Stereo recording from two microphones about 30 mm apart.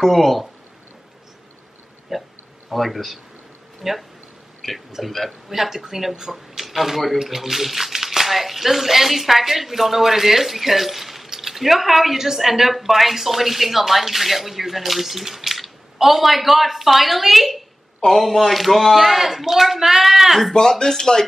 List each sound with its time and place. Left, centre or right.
0.0 s speech: centre
2.1 s a sound: centre
2.7 s speech: centre
3.8 s speech: centre
4.6 s speech: centre
5.5 s speech: centre
18.0 s speech: centre
20.8 s speech: centre